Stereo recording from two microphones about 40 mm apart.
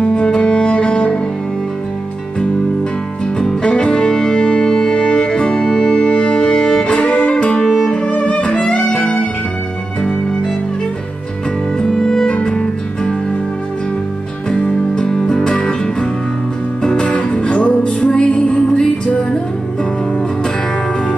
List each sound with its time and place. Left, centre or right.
0.0 s music: left
3.4 s music: left
7.0 s music: left
11.9 s music: centre
14.6 s music: left